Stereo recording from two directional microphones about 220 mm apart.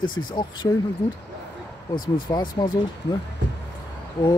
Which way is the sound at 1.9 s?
20° left (ahead or behind).